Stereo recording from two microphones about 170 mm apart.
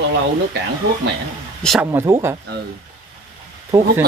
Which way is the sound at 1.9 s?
20° right (ahead or behind).